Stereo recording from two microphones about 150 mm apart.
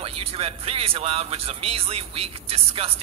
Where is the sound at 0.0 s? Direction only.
40° right (ahead or behind).